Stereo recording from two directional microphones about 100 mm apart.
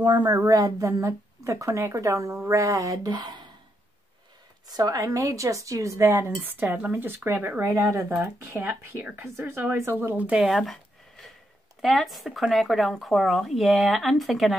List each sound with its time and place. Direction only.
0.0 s speech: 45° right (ahead or behind)
4.6 s speech: 40° right (ahead or behind); by 10.5 s 10° right (ahead or behind)
10.5 s a sound: centre (ahead or behind)
11.8 s speech: centre (ahead or behind)